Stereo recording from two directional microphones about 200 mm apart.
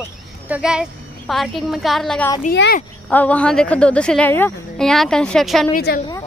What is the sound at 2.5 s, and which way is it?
Speech, 60° left (ahead or behind).